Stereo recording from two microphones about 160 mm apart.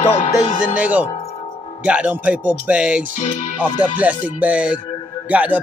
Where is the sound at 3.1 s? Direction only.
55° left (ahead or behind).